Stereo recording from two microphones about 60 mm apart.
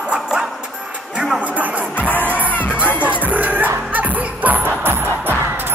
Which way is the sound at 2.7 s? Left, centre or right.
Right.